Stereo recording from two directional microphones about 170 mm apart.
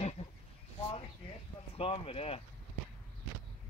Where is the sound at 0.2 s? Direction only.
35° left (ahead or behind).